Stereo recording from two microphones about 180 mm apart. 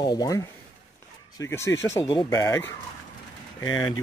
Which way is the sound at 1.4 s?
15° left (ahead or behind).